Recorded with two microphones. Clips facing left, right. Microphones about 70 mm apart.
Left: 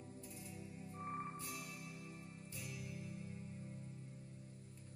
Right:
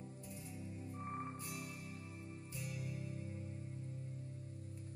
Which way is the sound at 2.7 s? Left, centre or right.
Right.